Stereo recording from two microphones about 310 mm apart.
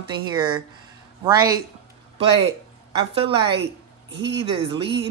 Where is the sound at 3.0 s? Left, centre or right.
Centre.